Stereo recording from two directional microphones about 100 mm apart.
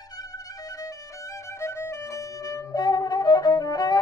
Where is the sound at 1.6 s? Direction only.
25° left (ahead or behind).